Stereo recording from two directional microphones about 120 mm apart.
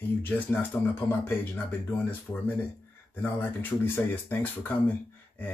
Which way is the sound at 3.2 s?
15° left (ahead or behind).